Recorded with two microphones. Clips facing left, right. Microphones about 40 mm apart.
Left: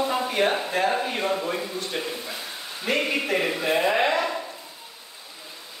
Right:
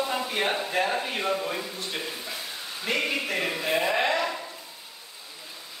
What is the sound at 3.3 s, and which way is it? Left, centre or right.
Speech, centre.